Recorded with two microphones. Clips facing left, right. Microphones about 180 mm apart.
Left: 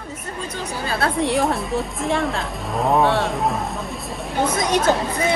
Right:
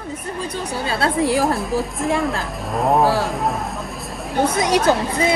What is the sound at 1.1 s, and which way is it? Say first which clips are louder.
A woman's voice: right 2 dB; centre (ahead or behind).